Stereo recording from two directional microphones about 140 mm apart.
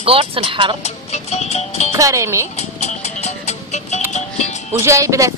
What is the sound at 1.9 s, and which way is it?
Speech, 25° right (ahead or behind).